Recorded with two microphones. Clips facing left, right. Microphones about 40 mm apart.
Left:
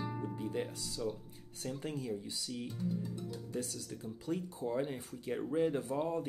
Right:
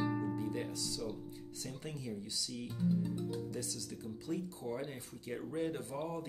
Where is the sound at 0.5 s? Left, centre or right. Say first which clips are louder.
Left 1 dB; left.